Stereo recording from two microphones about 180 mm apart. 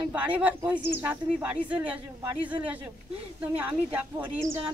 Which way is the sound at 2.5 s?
5° right (ahead or behind).